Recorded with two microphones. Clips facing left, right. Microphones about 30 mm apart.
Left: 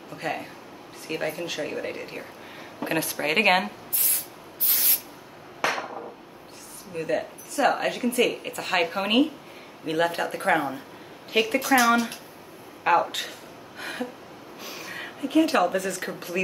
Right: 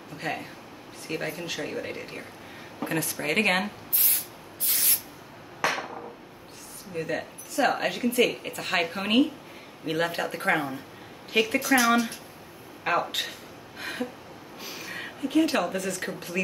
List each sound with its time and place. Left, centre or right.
0.1 s speech: centre
2.8 s speech: left
4.6 s spray: centre
5.6 s a sound: centre
6.9 s a woman's voice: centre
9.8 s speech: centre
13.1 s a sound: centre
14.6 s speech: centre